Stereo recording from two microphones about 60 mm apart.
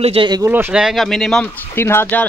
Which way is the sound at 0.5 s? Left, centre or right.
Right.